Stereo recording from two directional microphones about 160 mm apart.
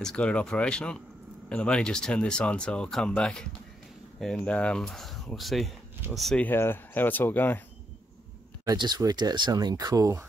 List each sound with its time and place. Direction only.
0.0 s speech: 5° left (ahead or behind)
8.6 s speech: 25° right (ahead or behind)